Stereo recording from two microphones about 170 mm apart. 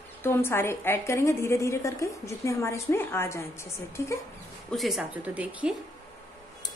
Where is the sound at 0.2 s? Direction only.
15° left (ahead or behind).